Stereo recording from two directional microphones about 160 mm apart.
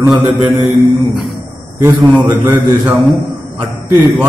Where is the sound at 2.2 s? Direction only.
25° right (ahead or behind).